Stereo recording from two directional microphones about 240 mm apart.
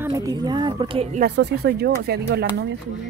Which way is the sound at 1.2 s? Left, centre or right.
Right.